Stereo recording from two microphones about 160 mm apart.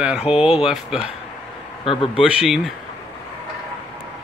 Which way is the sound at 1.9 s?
35° left (ahead or behind).